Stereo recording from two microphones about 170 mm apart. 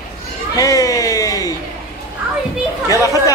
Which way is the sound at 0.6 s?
20° left (ahead or behind).